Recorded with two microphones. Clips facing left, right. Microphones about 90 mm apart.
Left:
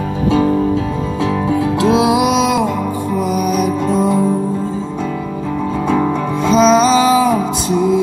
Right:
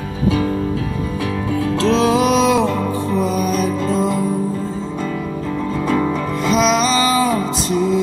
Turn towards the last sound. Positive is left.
turn(degrees=0)  # may be behind; listen again after turning